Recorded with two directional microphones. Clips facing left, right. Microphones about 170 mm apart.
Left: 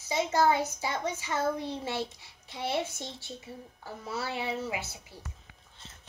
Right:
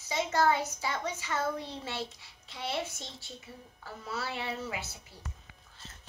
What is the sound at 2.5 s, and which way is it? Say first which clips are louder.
A woman's voice: left 4 dB; 20° left (ahead or behind).